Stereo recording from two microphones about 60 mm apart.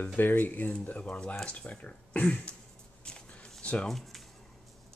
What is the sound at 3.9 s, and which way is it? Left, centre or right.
Speech, centre.